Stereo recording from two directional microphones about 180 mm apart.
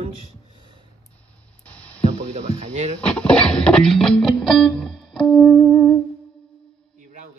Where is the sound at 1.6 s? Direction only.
5° left (ahead or behind).